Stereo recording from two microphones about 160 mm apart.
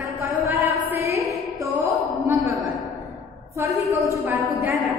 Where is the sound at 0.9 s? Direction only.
15° right (ahead or behind).